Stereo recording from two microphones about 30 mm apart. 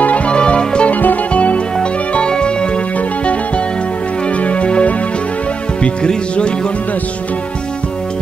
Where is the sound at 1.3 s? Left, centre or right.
Left.